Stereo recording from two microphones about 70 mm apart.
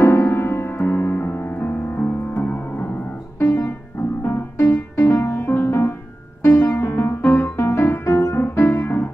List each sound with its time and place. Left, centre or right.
0.0 s music: left
8.4 s music: left